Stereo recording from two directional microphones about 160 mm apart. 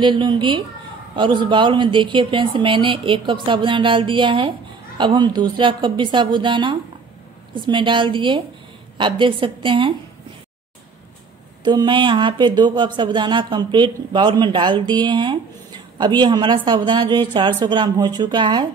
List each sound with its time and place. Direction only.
0.0 s speech: 30° right (ahead or behind)
11.6 s speech: 30° right (ahead or behind)